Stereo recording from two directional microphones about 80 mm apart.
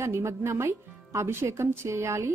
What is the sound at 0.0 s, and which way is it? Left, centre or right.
A woman's voice, right.